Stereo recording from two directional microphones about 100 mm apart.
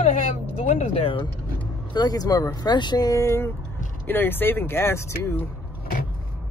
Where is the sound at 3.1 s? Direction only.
30° left (ahead or behind).